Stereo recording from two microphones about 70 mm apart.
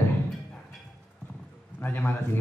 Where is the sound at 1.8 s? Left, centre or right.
Left.